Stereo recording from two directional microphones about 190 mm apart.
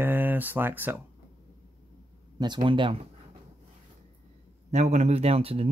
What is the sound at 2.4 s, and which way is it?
Speech, 25° right (ahead or behind).